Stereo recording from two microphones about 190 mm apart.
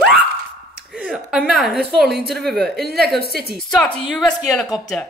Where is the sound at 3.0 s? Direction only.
55° right (ahead or behind).